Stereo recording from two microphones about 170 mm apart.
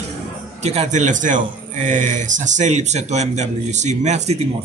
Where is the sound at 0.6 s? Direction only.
40° right (ahead or behind).